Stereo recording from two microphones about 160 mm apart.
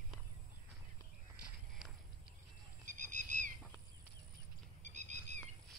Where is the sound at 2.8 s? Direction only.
50° right (ahead or behind).